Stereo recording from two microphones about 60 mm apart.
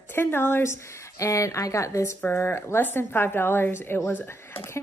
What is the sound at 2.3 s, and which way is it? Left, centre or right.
Speech, left.